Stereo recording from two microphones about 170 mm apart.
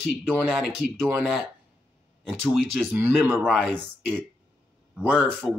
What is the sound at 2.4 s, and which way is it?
Speech, centre (ahead or behind).